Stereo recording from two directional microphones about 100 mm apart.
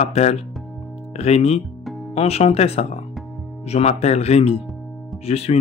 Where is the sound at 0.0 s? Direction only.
90° left.